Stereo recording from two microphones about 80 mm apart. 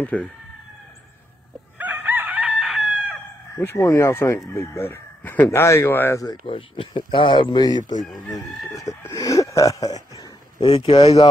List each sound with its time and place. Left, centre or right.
0.0 s speech: centre
1.8 s chicken: right
2.6 s chicken: centre
3.5 s chicken: left
4.6 s speech: left
5.6 s chicken: left
6.2 s speech: left
8.3 s speech: left
10.7 s speech: left